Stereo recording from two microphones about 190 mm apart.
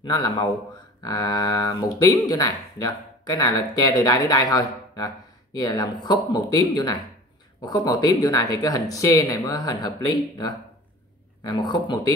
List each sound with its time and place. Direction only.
0.0 s speech: 20° left (ahead or behind)